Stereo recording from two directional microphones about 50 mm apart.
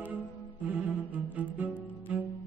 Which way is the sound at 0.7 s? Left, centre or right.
Right.